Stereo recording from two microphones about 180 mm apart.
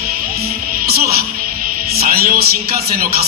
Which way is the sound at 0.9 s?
60° right (ahead or behind).